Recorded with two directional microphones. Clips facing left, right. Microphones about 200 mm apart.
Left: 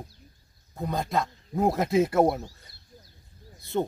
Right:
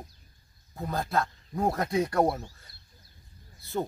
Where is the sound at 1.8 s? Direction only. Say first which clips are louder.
Left 6 dB; 25° left (ahead or behind).